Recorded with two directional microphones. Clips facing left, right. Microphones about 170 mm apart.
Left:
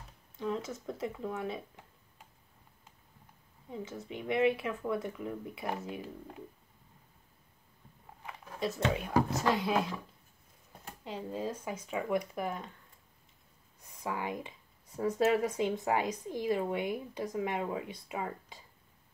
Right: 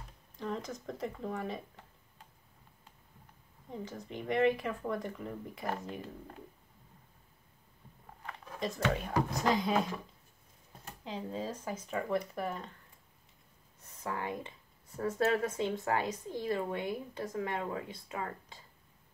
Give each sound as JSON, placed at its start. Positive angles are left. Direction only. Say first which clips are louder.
{"t": 0.4, "sound": "speech", "louder": "left 3 dB", "side_deg": 5}
{"t": 3.7, "sound": "speech", "louder": "left 1 dB", "side_deg": 5}
{"t": 8.2, "sound": "a sound", "louder": "left 2 dB", "side_deg": 10}
{"t": 8.9, "sound": "speech", "louder": "left 3 dB", "side_deg": 0}
{"t": 11.1, "sound": "speech", "louder": "left 1 dB", "side_deg": 5}
{"t": 14.0, "sound": "speech", "louder": "left 1 dB", "side_deg": 15}